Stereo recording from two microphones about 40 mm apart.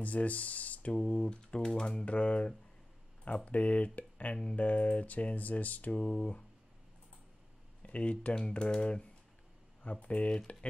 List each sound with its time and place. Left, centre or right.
0.0 s speech: left
2.0 s speech: left
7.8 s speech: left
8.4 s speech: left